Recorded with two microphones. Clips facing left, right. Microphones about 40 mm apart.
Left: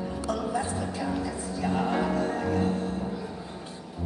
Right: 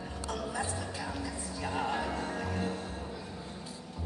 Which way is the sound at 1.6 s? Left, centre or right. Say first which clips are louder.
Left 6 dB; centre.